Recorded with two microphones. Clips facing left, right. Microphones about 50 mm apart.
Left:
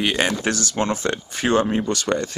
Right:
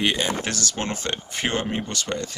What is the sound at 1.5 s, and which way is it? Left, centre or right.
Speech, left.